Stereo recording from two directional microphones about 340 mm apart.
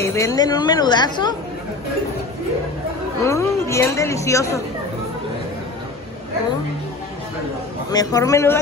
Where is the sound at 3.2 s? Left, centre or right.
Centre.